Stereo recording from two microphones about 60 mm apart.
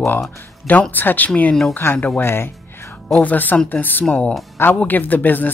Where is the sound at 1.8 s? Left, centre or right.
Left.